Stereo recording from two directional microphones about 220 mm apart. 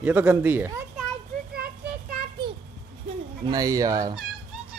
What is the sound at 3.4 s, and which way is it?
Speech, 15° right (ahead or behind).